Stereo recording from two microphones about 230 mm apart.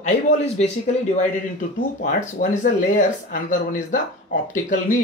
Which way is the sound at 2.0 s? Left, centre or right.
Left.